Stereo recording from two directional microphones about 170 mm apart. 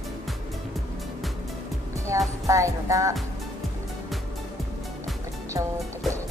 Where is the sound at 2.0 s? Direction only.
20° right (ahead or behind).